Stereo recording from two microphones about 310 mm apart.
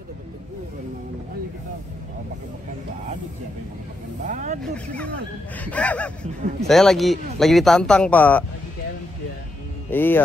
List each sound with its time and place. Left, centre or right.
4.3 s snake: right
4.6 s speech: centre
9.8 s speech: centre